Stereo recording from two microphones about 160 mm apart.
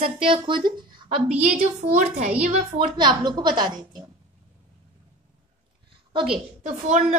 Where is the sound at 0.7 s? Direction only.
30° right (ahead or behind).